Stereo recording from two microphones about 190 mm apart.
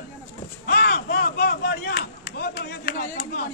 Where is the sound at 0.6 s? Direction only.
55° left (ahead or behind).